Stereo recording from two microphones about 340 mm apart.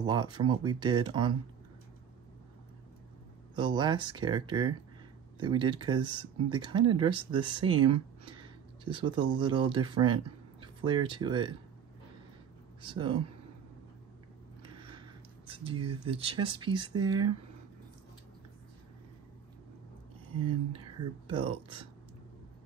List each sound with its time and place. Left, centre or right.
0.0 s speech: centre
3.5 s speech: centre
8.9 s speech: centre
12.8 s speech: centre
15.4 s a sound: centre
16.1 s speech: centre
21.3 s speech: centre